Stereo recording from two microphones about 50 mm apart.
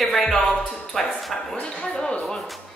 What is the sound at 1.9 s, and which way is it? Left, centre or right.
Speech, centre.